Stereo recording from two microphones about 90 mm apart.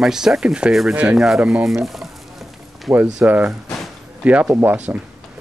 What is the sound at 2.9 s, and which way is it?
Speech, 20° right (ahead or behind).